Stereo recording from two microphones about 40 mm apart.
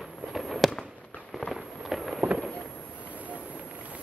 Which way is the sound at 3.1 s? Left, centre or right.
Right.